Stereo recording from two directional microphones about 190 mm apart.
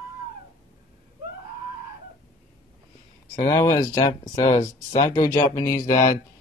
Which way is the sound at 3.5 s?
15° left (ahead or behind).